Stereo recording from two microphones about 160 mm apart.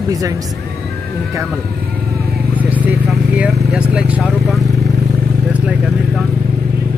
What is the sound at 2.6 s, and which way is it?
Vehicle, 10° right (ahead or behind).